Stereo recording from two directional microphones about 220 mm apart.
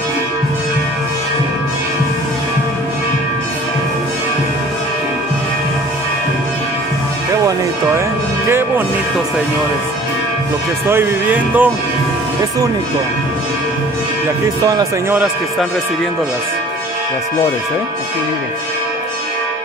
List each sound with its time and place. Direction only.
8.5 s music: 10° right (ahead or behind)
10.9 s music: 10° right (ahead or behind)
14.6 s music: 15° right (ahead or behind)